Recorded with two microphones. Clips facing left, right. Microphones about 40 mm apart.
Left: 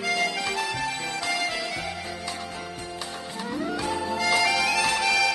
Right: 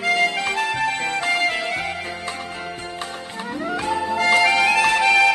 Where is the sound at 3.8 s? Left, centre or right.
Right.